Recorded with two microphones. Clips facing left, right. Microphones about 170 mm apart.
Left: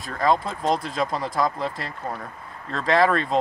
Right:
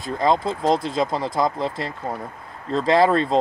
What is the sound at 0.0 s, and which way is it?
Speech, 25° right (ahead or behind).